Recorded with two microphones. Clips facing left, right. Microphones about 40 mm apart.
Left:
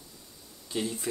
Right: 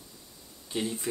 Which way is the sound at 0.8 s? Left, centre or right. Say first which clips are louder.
Even; centre.